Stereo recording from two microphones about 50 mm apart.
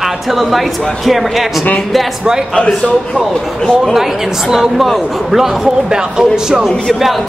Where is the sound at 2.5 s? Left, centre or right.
Centre.